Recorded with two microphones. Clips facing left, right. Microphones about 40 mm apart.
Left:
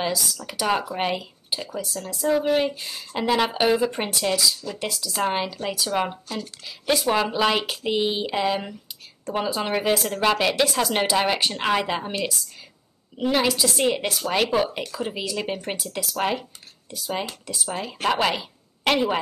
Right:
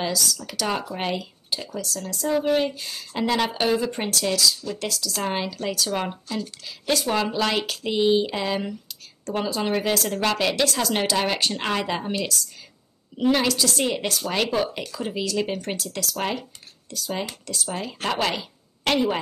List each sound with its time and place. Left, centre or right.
0.0 s speech: centre
2.2 s speech: centre
12.0 s speech: centre
13.2 s speech: centre